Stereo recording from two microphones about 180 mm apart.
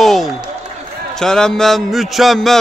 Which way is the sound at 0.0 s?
Centre (ahead or behind).